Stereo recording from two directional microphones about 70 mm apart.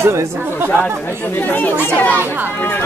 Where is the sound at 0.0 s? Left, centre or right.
Right.